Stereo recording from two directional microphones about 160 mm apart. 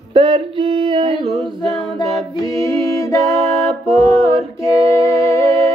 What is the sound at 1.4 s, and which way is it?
Music, centre (ahead or behind).